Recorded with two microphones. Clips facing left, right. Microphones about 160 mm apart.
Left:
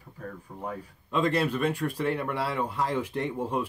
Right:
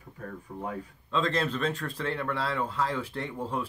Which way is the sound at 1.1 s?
10° left (ahead or behind).